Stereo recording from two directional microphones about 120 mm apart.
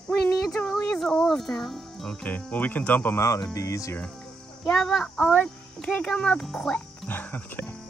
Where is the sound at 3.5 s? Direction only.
25° left (ahead or behind).